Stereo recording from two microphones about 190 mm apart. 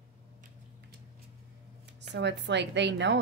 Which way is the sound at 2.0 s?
65° right (ahead or behind).